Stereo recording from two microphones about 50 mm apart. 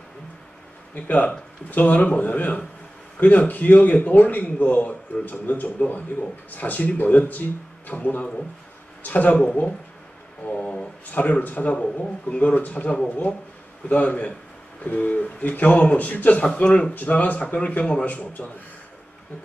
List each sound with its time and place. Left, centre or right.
0.9 s a man's voice: left
16.5 s a man's voice: centre